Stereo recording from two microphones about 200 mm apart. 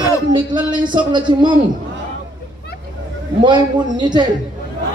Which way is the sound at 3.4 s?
20° right (ahead or behind).